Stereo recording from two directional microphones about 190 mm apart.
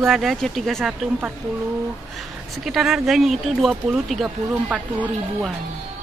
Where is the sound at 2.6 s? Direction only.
Centre (ahead or behind).